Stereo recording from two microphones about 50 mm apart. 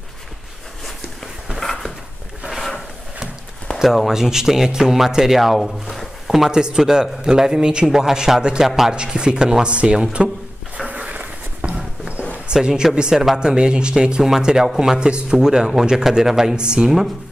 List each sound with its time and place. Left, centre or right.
1.6 s a sound: centre
3.7 s speech: centre
6.5 s speech: centre
8.9 s speech: centre
11.0 s a sound: right
12.4 s speech: centre